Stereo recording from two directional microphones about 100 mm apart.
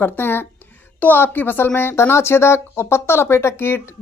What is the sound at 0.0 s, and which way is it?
Speech, 20° left (ahead or behind).